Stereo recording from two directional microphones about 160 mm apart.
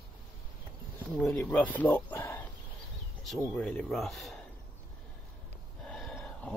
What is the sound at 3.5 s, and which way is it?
Speech, 5° left (ahead or behind).